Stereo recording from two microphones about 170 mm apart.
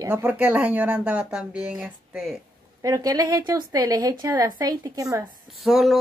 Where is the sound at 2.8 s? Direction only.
20° right (ahead or behind).